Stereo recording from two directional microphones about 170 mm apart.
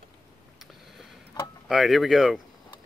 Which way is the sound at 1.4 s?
25° left (ahead or behind).